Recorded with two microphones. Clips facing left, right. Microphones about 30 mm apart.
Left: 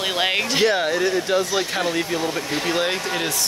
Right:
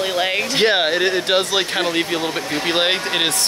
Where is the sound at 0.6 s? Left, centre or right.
Right.